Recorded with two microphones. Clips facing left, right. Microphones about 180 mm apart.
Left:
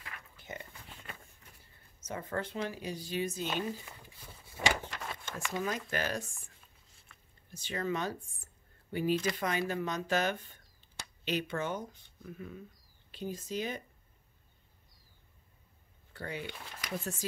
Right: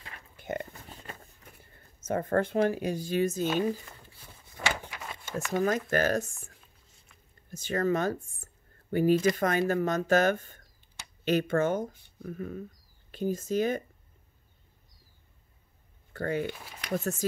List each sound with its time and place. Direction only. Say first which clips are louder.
0.4 s pig: right 12 dB; 55° right (ahead or behind)
2.0 s speech: right 10 dB; 50° right (ahead or behind)
4.7 s vehicle: even; 10° right (ahead or behind)
5.5 s speech: right 9 dB; 45° right (ahead or behind)
7.5 s speech: right 7 dB; 45° right (ahead or behind)
16.1 s speech: right 10 dB; 50° right (ahead or behind)
16.5 s speech: right 1 dB; 5° right (ahead or behind)
16.9 s speech: right 8 dB; 45° right (ahead or behind)